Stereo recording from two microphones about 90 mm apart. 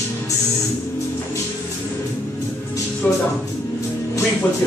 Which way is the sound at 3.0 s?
15° left (ahead or behind).